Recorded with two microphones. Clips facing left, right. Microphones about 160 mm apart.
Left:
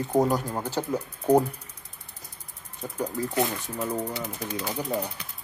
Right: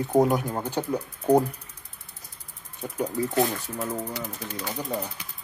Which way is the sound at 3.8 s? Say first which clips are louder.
Left 3 dB; 10° left (ahead or behind).